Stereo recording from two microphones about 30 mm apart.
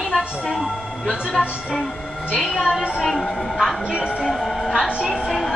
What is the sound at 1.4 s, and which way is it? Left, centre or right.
Speech, right.